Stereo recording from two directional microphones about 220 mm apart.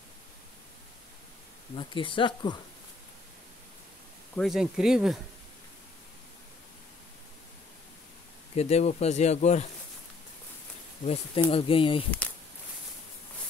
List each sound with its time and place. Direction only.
1.8 s speech: 20° left (ahead or behind)
4.4 s speech: centre (ahead or behind)
8.5 s speech: 30° left (ahead or behind)
11.1 s speech: 25° left (ahead or behind)